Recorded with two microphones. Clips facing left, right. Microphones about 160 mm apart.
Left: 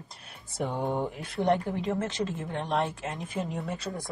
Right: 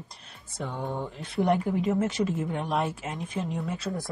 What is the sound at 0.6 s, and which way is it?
Speech, 20° left (ahead or behind).